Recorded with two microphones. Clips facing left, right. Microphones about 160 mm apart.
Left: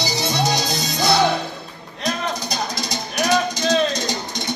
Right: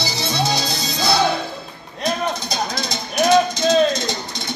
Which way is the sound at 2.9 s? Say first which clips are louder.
Right 4 dB; 10° left (ahead or behind).